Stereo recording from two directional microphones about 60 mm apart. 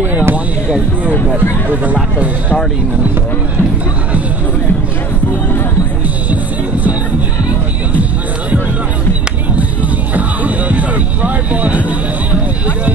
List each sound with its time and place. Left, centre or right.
0.0 s basketball bounce: right
1.3 s speech: right
10.1 s a sound: right